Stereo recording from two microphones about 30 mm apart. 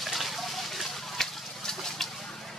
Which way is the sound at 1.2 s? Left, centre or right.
Centre.